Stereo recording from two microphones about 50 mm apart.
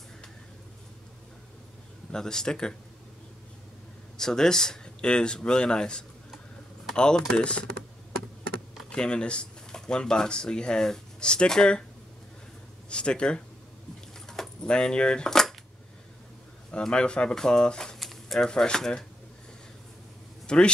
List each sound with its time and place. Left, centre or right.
2.1 s speech: centre
4.2 s speech: centre
8.9 s speech: centre
12.9 s speech: centre
14.2 s keys jangling: centre
16.8 s speech: centre
17.9 s a sound: centre
18.5 s speech: centre
20.4 s speech: centre